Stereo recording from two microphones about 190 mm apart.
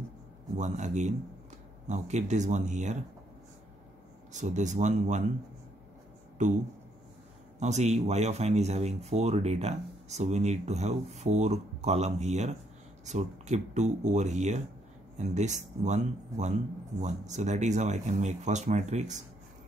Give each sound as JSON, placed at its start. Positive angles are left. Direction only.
{"t": 0.6, "sound": "speech", "side_deg": -40}
{"t": 4.3, "sound": "speech", "side_deg": -40}
{"t": 6.4, "sound": "speech", "side_deg": -40}
{"t": 7.6, "sound": "speech", "side_deg": -35}